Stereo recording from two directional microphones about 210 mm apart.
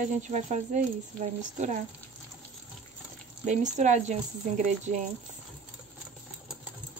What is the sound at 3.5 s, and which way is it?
Speech, 35° right (ahead or behind).